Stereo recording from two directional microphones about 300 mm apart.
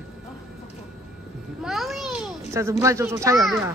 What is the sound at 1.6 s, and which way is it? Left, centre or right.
A child's voice, centre.